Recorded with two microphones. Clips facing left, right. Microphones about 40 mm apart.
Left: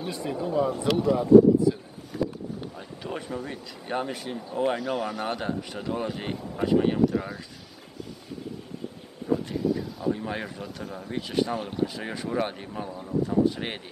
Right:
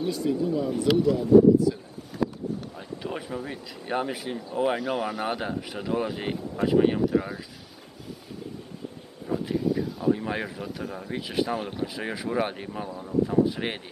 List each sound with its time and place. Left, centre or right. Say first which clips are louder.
0.1 s speech: even; left
3.0 s speech: even; centre
9.3 s speech: even; centre